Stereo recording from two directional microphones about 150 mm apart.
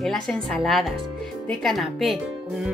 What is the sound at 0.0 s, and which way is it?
Speech, centre (ahead or behind).